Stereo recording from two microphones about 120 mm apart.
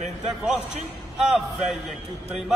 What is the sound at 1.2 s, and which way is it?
Speech, centre (ahead or behind).